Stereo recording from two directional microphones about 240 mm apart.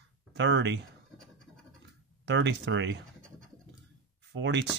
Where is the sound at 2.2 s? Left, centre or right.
Right.